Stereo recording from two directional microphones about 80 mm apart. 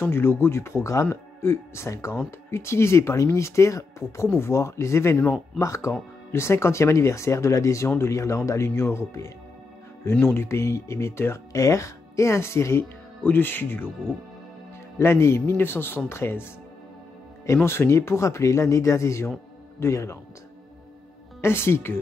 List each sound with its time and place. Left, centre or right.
0.0 s speech: left
15.0 s speech: left
17.6 s speech: left
21.4 s speech: left